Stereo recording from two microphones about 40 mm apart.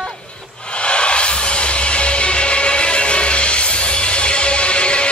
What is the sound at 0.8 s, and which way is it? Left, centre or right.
Music, left.